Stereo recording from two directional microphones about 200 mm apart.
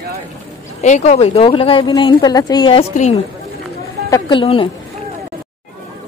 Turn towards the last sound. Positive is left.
turn(degrees=25)  # may be behind; listen again after turning